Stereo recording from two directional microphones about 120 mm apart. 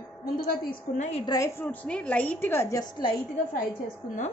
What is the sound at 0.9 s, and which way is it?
Speech, 75° left (ahead or behind).